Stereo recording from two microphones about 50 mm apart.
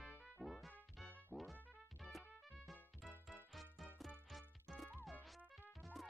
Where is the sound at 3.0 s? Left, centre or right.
Centre.